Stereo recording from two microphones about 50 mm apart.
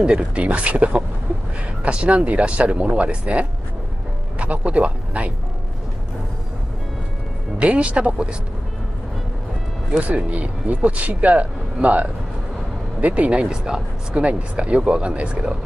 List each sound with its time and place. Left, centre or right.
0.0 s speech: centre
7.5 s speech: right
9.9 s speech: right
13.5 s speech: centre
14.2 s speech: right